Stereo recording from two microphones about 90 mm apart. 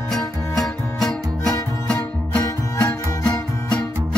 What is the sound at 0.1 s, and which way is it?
Music, centre (ahead or behind).